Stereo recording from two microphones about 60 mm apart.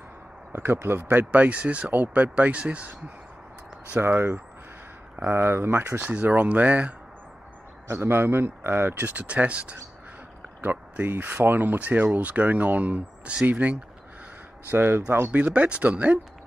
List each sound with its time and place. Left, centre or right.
0.5 s speech: right
4.0 s speech: right
5.9 s speech: right
7.9 s speech: right
10.6 s speech: right
14.7 s speech: right